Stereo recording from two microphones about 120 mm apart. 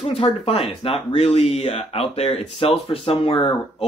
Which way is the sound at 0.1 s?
50° left (ahead or behind).